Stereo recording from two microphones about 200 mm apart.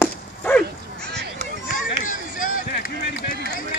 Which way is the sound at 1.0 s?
55° right (ahead or behind).